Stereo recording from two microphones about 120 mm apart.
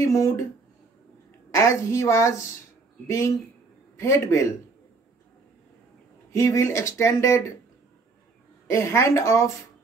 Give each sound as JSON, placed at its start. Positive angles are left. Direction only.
{"t": 0.0, "sound": "speech", "side_deg": 25}
{"t": 1.5, "sound": "speech", "side_deg": 25}
{"t": 6.3, "sound": "speech", "side_deg": 25}
{"t": 8.7, "sound": "speech", "side_deg": 25}